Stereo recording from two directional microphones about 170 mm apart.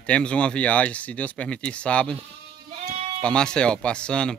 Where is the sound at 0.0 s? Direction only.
5° left (ahead or behind).